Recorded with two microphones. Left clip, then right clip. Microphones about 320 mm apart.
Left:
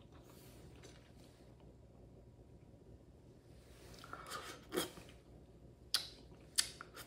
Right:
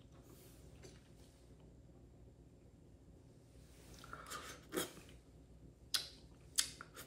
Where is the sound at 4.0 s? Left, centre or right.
Centre.